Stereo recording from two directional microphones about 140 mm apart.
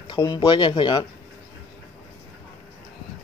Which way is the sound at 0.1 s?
30° left (ahead or behind).